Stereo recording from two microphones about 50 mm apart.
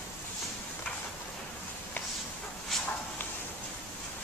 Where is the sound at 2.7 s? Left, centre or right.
Centre.